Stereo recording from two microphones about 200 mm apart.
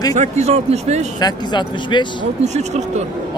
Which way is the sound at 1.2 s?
20° left (ahead or behind).